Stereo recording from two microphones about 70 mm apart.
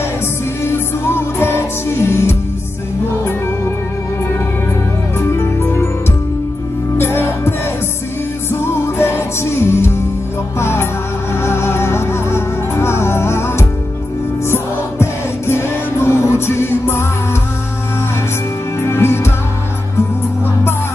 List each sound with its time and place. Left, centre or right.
0.7 s music: left
5.2 s music: left
7.0 s music: left
18.8 s music: left